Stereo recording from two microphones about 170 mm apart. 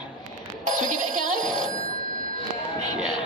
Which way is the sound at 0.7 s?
50° right (ahead or behind).